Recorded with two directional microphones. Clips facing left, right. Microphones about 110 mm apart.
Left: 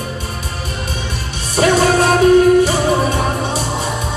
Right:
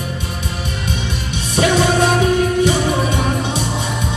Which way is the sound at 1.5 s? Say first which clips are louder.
Left 2 dB; 40° left (ahead or behind).